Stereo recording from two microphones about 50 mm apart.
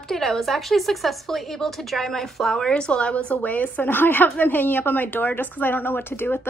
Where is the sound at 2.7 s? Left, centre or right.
Centre.